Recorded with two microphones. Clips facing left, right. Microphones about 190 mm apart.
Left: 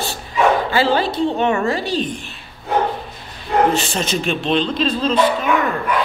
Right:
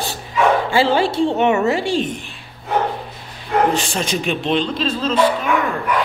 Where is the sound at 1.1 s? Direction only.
20° right (ahead or behind).